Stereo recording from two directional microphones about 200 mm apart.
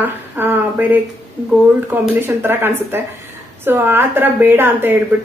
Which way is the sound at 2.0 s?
10° right (ahead or behind).